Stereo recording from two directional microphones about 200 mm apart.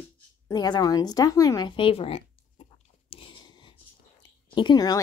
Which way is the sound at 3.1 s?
25° left (ahead or behind).